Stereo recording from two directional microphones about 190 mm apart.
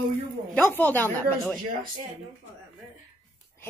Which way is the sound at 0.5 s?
10° left (ahead or behind).